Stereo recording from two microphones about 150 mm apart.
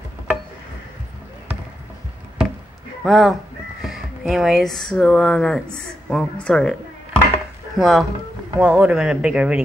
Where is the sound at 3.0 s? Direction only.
Centre (ahead or behind).